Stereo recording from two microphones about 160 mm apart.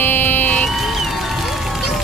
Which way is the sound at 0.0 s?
10° left (ahead or behind).